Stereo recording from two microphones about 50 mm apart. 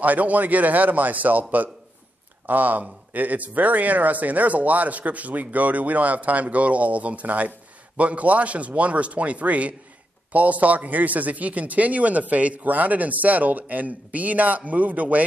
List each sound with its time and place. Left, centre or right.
0.0 s speech: right